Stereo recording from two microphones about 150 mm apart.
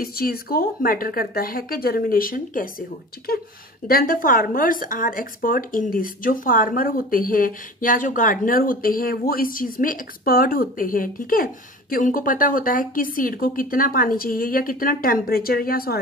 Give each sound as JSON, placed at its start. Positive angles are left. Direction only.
{"t": 0.0, "sound": "speech", "side_deg": 85}
{"t": 3.8, "sound": "speech", "side_deg": 75}